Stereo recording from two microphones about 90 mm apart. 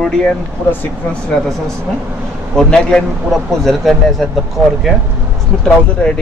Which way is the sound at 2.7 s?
10° left (ahead or behind).